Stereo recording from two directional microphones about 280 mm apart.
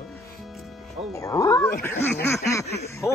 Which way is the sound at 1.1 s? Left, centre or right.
Centre.